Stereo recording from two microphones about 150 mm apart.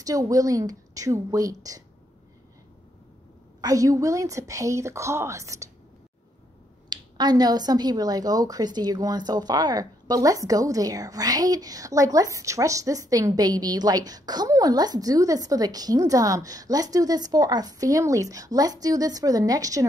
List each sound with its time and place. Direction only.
0.0 s a woman's voice: 20° right (ahead or behind)
3.6 s a woman's voice: 20° right (ahead or behind)
6.9 s a woman's voice: 30° right (ahead or behind)